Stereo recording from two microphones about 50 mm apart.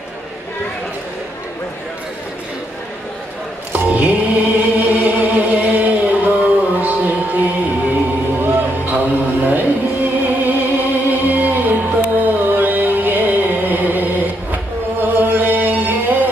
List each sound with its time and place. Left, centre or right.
3.7 s mantra: right
6.8 s music: right